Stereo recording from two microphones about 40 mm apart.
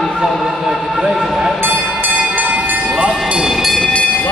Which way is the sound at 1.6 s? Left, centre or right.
Right.